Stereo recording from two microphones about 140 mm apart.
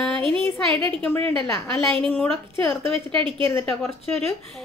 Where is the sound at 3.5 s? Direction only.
20° left (ahead or behind).